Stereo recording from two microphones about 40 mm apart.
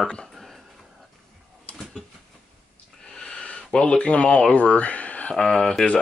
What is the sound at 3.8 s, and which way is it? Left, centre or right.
Speech, left.